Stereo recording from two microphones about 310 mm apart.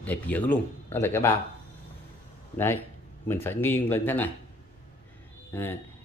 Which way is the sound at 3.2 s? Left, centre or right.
Centre.